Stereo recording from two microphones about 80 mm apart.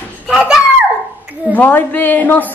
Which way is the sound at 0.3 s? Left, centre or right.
Centre.